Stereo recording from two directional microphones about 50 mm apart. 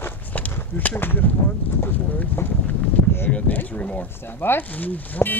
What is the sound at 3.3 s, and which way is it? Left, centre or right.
Speech, left.